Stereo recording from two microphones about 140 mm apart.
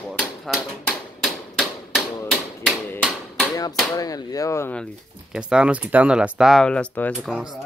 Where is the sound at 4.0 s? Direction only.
25° left (ahead or behind).